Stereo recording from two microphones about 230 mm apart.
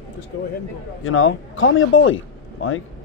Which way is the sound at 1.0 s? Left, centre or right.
Left.